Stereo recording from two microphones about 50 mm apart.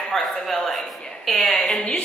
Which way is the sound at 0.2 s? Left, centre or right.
Centre.